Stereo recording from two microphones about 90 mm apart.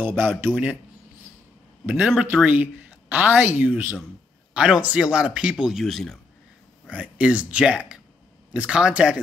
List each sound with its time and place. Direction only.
0.0 s a woman's voice: 20° right (ahead or behind)
1.9 s a woman's voice: 10° right (ahead or behind)
6.9 s a woman's voice: 15° right (ahead or behind)